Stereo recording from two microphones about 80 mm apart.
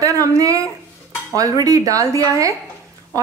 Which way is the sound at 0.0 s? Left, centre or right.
Right.